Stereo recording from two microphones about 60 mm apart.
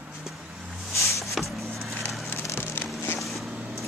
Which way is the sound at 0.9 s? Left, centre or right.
Left.